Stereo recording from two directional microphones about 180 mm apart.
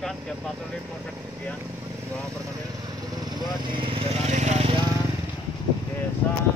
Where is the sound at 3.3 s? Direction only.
25° right (ahead or behind).